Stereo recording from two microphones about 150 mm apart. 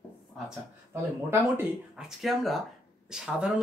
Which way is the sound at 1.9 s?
Centre (ahead or behind).